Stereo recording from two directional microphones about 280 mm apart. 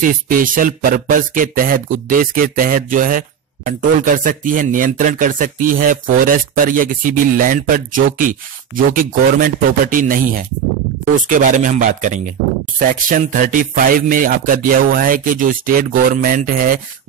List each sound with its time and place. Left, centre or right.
0.0 s speech: right